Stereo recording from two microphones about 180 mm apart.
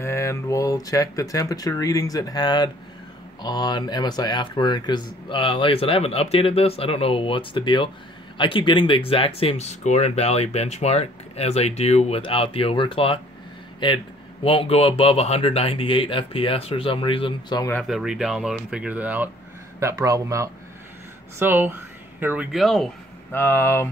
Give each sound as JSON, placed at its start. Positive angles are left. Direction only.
{"t": 0.0, "sound": "speech", "side_deg": 15}
{"t": 17.7, "sound": "speech", "side_deg": 0}
{"t": 23.3, "sound": "speech", "side_deg": 15}